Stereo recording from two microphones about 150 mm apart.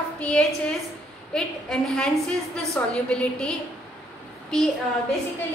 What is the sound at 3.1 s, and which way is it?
A woman's voice, 5° left (ahead or behind).